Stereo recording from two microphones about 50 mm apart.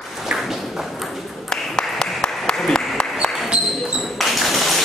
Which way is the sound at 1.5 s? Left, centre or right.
Centre.